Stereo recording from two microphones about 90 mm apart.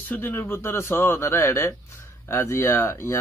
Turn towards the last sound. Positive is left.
turn(degrees=30)  # may be behind; listen again after turning